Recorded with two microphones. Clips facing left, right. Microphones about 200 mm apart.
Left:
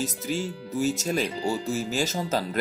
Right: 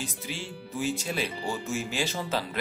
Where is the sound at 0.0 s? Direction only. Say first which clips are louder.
Left 8 dB; 40° left (ahead or behind).